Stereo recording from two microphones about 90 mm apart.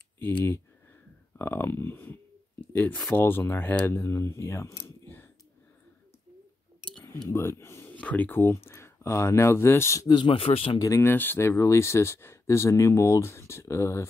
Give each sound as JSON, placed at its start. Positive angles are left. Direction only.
{"t": 0.2, "sound": "speech", "side_deg": 20}
{"t": 7.2, "sound": "speech", "side_deg": 30}
{"t": 7.9, "sound": "speech", "side_deg": 15}
{"t": 10.0, "sound": "speech", "side_deg": 60}
{"t": 11.0, "sound": "speech", "side_deg": 20}